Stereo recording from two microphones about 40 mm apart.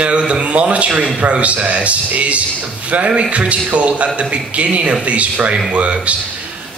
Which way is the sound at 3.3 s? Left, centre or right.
Right.